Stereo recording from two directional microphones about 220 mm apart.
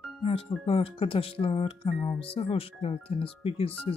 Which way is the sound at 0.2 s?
25° left (ahead or behind).